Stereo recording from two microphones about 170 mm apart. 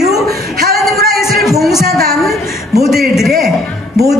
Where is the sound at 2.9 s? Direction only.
Centre (ahead or behind).